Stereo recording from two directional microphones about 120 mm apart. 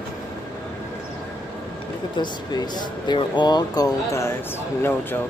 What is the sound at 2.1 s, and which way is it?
Speech, 35° left (ahead or behind).